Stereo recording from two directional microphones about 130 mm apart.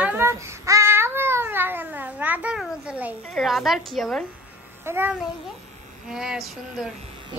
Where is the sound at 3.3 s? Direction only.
Centre (ahead or behind).